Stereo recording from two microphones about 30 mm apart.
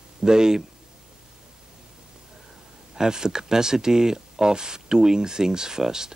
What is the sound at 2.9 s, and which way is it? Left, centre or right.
Speech, right.